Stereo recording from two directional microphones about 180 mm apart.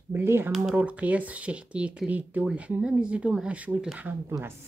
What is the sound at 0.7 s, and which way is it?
A woman's voice, 5° right (ahead or behind).